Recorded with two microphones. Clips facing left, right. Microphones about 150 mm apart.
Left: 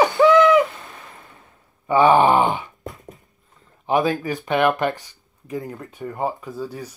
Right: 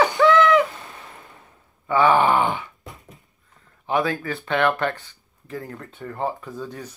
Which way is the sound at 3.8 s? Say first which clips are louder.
Left 3 dB; 20° left (ahead or behind).